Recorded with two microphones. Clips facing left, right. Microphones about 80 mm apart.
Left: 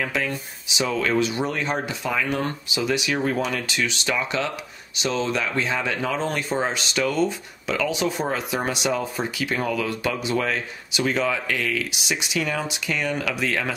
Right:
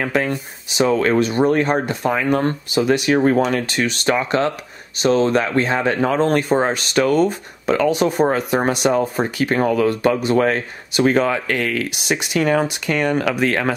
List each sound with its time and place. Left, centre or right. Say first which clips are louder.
0.0 s speech: right 6 dB; right